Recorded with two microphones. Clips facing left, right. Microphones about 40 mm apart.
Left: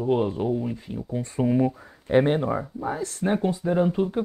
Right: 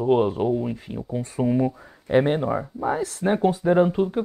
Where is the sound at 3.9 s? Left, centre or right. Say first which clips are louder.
Right 1 dB; centre.